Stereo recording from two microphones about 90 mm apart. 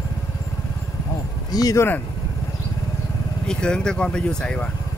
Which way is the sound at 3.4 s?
10° left (ahead or behind).